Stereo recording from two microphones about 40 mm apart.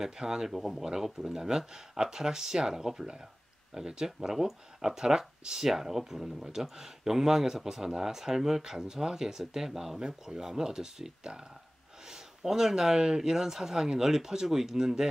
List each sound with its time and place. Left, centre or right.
0.0 s speech: centre